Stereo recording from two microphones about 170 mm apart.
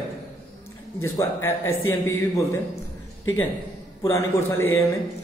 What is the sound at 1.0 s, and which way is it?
Speech, 15° left (ahead or behind).